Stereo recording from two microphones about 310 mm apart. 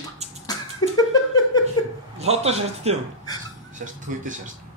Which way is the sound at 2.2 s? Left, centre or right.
Centre.